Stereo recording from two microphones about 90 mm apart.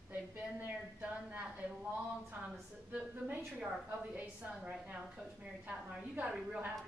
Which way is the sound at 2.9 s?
15° right (ahead or behind).